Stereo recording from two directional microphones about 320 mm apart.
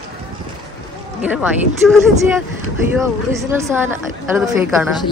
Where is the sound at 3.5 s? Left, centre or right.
Centre.